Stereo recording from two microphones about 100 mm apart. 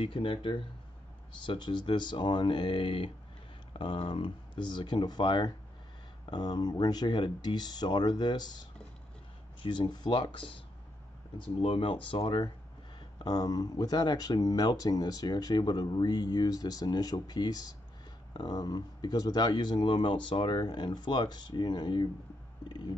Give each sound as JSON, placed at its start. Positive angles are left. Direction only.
{"t": 0.0, "sound": "speech", "side_deg": 60}
{"t": 11.3, "sound": "speech", "side_deg": 60}
{"t": 13.2, "sound": "speech", "side_deg": 40}